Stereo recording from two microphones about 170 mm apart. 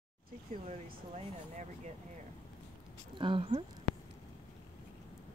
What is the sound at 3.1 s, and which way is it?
Speech, 30° right (ahead or behind).